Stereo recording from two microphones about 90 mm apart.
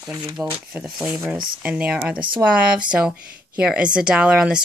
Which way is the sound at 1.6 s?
15° right (ahead or behind).